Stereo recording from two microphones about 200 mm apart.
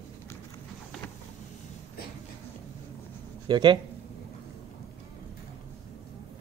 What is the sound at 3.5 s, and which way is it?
Speech, 25° right (ahead or behind).